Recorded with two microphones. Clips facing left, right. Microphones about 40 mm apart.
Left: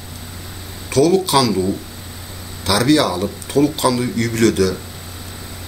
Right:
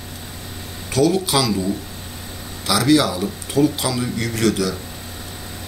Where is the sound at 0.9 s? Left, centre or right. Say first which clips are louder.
Left 3 dB; centre.